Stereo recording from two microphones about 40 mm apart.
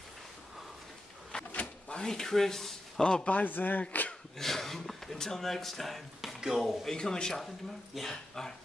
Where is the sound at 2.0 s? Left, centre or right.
Centre.